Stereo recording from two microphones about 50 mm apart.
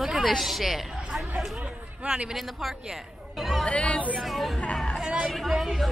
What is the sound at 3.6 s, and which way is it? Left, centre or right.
Speech, left.